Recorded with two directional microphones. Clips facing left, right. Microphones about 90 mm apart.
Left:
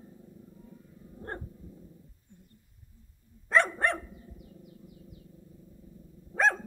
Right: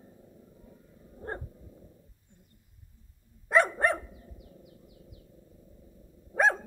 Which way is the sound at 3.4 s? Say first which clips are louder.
Right 2 dB; 10° right (ahead or behind).